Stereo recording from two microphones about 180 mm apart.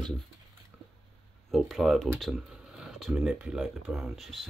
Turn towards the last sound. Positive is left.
turn(degrees=0)  # may be behind; listen again after turning